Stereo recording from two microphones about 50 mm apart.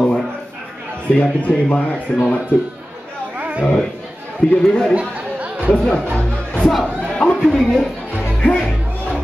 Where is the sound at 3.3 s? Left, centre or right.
Right.